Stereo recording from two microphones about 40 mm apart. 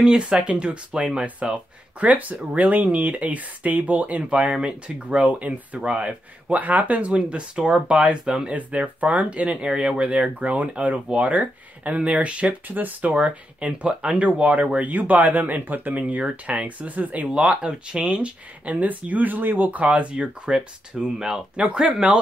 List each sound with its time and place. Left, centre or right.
0.2 s speech: right
7.1 s speech: right
12.6 s speech: right
13.1 s speech: right
17.3 s speech: right
19.8 s speech: right; by 21.4 s centre
21.5 s speech: right